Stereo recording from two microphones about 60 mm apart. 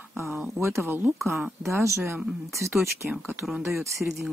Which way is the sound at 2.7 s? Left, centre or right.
Centre.